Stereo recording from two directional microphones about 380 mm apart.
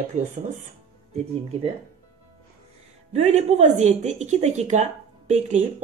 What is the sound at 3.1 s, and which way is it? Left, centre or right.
A woman's voice, centre.